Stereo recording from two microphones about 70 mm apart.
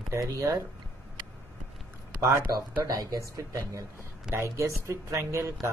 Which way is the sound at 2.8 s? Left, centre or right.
Right.